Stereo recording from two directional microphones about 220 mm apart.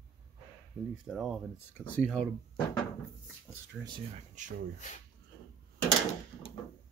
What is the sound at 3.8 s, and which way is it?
Speech, 20° right (ahead or behind).